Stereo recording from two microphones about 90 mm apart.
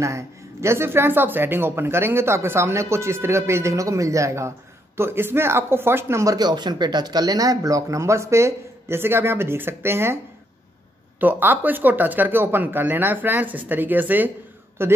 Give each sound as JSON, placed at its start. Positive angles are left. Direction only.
{"t": 0.0, "sound": "speech", "side_deg": -30}
{"t": 6.3, "sound": "speech", "side_deg": -50}
{"t": 11.1, "sound": "speech", "side_deg": -20}